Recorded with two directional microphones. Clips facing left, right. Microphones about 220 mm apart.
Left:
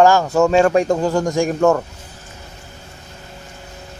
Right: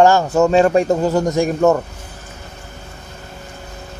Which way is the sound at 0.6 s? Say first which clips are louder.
Right 1 dB; 5° right (ahead or behind).